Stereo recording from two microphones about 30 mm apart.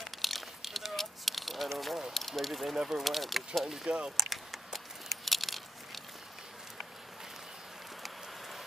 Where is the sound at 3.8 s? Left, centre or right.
Right.